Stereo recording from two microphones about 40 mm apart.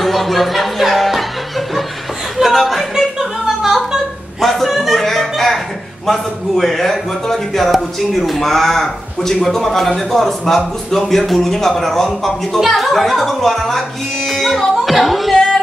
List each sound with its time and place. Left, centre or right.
0.0 s speech: centre
2.3 s chuckle: centre
3.2 s a sound: centre
4.4 s a sound: centre
4.6 s music: centre
5.0 s music: centre
6.0 s a man's voice: centre